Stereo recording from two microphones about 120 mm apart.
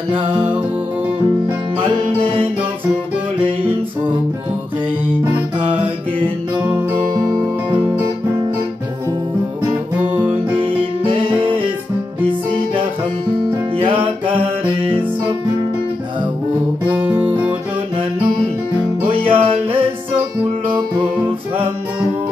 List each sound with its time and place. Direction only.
0.3 s music: 15° right (ahead or behind)
7.2 s music: 30° right (ahead or behind)
16.8 s music: 15° right (ahead or behind)
19.2 s music: 50° right (ahead or behind)